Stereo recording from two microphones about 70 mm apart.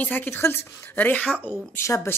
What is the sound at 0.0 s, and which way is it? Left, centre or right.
Speech, left.